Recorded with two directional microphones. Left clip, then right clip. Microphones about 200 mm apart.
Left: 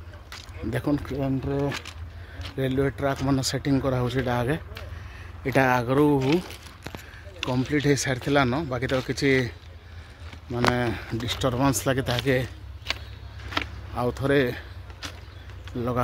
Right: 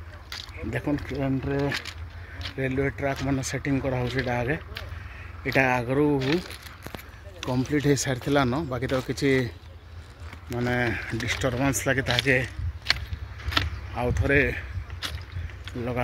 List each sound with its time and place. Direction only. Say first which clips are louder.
0.4 s speech: left 1 dB; 15° left (ahead or behind)
1.1 s speech: even; 5° left (ahead or behind)
2.5 s speech: left 2 dB; 15° left (ahead or behind)
7.4 s speech: left 1 dB; centre (ahead or behind)
10.5 s speech: left 2 dB; 5° left (ahead or behind)
13.9 s speech: even; 15° left (ahead or behind)
15.7 s speech: left 3 dB; 25° left (ahead or behind)